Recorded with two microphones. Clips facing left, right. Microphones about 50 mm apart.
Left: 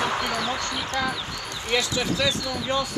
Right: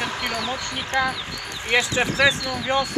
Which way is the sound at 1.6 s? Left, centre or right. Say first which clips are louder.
Right 4 dB; right.